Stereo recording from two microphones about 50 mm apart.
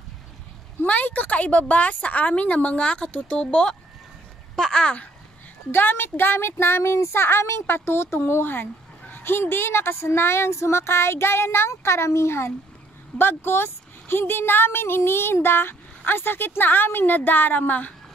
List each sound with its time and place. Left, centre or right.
0.8 s a woman's voice: left
5.7 s speech: left
13.2 s speech: left